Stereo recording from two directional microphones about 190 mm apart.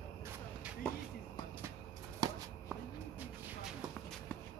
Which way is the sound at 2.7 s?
5° right (ahead or behind).